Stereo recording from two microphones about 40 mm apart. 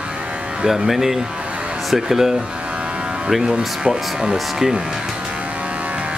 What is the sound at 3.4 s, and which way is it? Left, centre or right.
Speech, centre.